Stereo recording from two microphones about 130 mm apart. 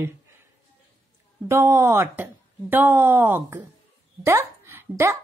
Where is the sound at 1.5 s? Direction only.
20° right (ahead or behind).